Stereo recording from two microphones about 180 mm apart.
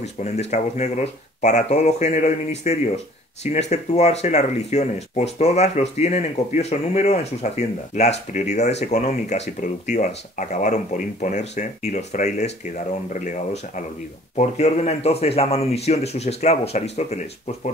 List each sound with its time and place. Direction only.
0.0 s speech: 40° left (ahead or behind)